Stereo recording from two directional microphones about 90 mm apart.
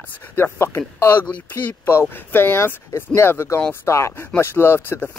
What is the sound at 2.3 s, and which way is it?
Speech, 25° left (ahead or behind).